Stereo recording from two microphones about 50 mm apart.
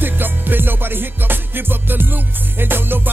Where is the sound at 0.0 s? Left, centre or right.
Right.